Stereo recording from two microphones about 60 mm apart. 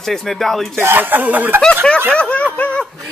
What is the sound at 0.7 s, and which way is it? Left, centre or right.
Speech, right.